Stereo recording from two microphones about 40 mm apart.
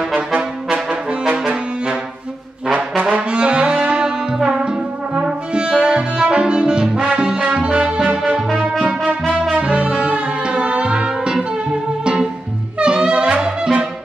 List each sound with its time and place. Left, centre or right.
0.1 s brass instrument: right
1.4 s saxophone: right
3.0 s brass instrument: right
3.3 s brass instrument: right
4.5 s music: right
9.0 s brass instrument: centre
9.6 s music: right